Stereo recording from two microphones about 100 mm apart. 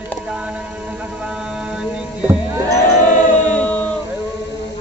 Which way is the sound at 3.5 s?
15° left (ahead or behind).